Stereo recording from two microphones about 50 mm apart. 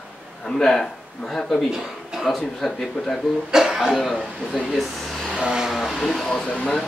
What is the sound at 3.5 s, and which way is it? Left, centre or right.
Speech, centre.